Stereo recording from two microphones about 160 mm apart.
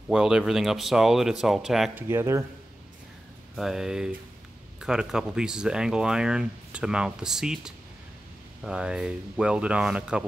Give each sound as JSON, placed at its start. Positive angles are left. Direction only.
{"t": 0.1, "sound": "speech", "side_deg": -5}
{"t": 2.0, "sound": "speech", "side_deg": -15}
{"t": 3.5, "sound": "speech", "side_deg": 0}